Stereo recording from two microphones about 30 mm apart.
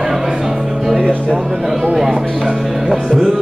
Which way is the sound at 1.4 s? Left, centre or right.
Centre.